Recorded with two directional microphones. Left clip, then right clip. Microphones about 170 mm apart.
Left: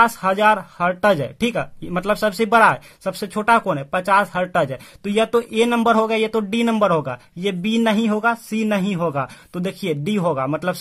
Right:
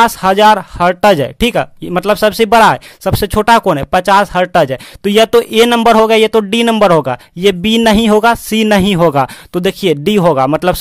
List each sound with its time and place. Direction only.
0.0 s speech: 40° right (ahead or behind)